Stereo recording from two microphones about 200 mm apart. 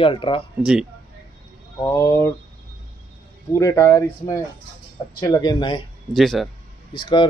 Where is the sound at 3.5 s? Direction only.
15° left (ahead or behind).